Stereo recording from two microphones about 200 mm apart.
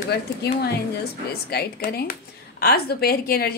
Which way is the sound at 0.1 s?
55° left (ahead or behind).